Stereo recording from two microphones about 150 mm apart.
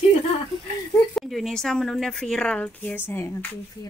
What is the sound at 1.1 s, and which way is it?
Speech, centre (ahead or behind).